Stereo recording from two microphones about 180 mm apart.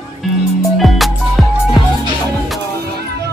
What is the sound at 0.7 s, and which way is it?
Music, centre (ahead or behind).